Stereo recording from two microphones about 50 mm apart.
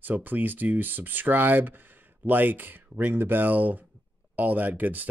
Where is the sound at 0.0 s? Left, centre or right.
Right.